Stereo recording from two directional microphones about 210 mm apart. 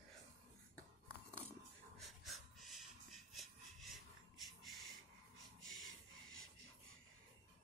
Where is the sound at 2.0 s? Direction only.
Centre (ahead or behind).